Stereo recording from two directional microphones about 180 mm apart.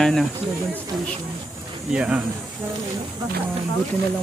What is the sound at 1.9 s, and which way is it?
Speech, 5° right (ahead or behind).